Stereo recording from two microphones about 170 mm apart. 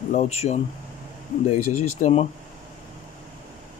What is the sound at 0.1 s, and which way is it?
Speech, 40° left (ahead or behind).